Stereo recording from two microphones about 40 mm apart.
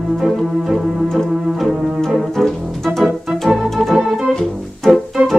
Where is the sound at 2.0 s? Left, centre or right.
Centre.